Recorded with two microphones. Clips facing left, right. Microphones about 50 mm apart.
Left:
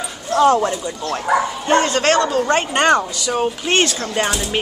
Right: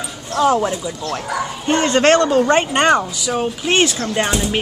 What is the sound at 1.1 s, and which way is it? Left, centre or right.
Bow-wow, left.